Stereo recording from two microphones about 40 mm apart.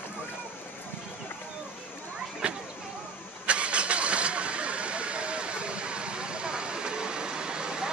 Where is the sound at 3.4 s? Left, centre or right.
Right.